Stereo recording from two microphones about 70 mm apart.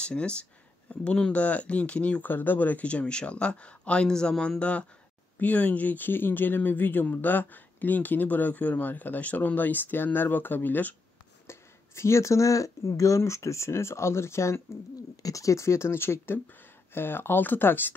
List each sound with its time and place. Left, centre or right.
0.0 s speech: centre
11.4 s speech: left
15.2 s speech: left